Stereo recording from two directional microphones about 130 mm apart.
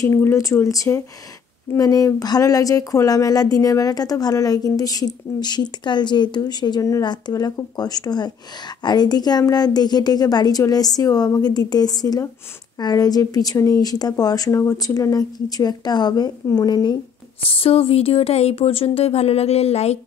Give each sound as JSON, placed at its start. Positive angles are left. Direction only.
{"t": 0.0, "sound": "speech", "side_deg": 20}
{"t": 17.4, "sound": "speech", "side_deg": 45}